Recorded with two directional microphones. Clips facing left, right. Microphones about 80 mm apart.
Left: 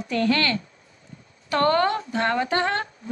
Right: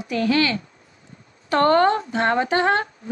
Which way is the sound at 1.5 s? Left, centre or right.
Right.